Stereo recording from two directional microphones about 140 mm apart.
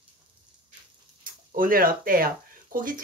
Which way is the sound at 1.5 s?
90° right.